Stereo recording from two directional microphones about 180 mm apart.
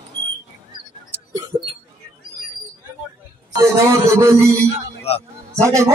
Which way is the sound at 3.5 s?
15° right (ahead or behind).